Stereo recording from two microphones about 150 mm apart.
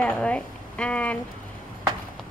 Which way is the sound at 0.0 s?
5° left (ahead or behind).